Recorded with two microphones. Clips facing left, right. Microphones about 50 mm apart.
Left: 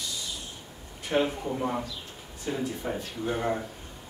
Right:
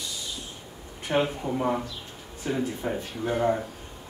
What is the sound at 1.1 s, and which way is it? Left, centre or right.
Speech, centre.